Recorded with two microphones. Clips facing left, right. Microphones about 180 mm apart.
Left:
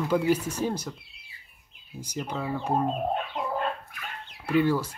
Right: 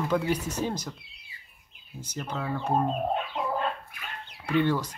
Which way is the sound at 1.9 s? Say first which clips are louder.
Left 2 dB; 10° left (ahead or behind).